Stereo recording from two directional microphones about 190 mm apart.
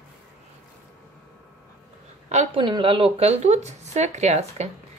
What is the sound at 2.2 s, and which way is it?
Speech, 30° right (ahead or behind).